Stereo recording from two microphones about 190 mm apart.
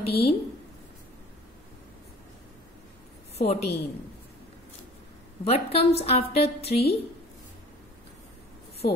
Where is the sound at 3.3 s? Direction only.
35° left (ahead or behind).